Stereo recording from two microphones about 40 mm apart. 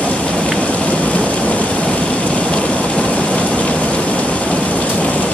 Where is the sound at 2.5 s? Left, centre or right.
Left.